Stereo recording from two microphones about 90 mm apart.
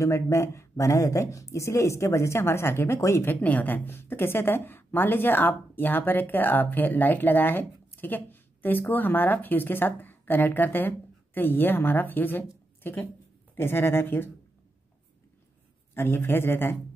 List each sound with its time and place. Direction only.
0.0 s speech: 35° left (ahead or behind)
15.9 s speech: 25° left (ahead or behind)